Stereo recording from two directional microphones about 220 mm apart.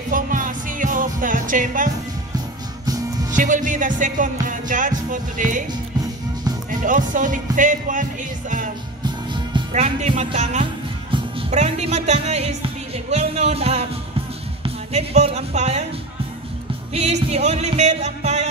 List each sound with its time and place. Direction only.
0.1 s music: 35° right (ahead or behind)
2.8 s music: 15° right (ahead or behind)
3.3 s music: 35° right (ahead or behind)
6.7 s music: 35° right (ahead or behind)
9.8 s speech: 30° right (ahead or behind)
16.9 s music: 30° right (ahead or behind)